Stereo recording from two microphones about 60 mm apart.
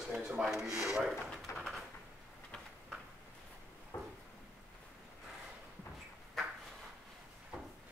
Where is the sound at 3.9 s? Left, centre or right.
Left.